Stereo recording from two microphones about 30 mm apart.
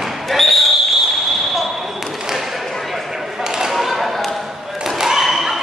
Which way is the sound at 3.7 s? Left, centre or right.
Centre.